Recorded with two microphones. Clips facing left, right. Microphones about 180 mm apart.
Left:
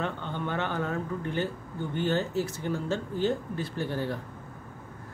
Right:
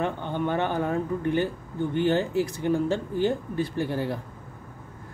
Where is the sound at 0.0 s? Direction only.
15° right (ahead or behind).